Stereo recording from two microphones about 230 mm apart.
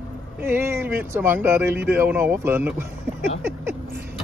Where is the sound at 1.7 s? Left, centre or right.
Right.